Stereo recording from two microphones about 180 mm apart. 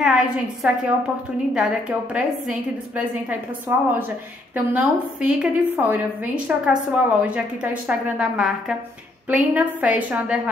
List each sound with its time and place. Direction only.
0.0 s a woman's voice: centre (ahead or behind)